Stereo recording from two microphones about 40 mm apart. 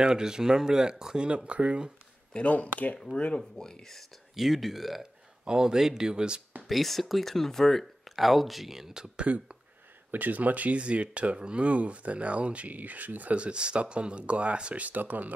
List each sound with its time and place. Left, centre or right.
0.0 s speech: centre
1.2 s speech: right
2.3 s speech: left
3.3 s speech: centre
4.4 s speech: centre
5.4 s speech: centre
6.7 s speech: centre
9.2 s speech: right
10.1 s speech: right
10.8 s speech: right
13.4 s speech: right
14.9 s speech: right